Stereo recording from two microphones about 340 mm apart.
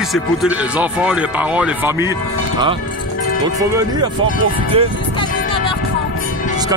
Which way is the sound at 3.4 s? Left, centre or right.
Centre.